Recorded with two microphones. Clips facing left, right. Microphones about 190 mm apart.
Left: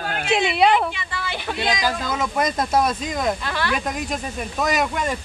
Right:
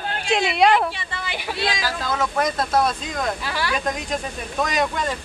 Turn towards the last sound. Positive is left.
turn(degrees=10)  # may be behind; listen again after turning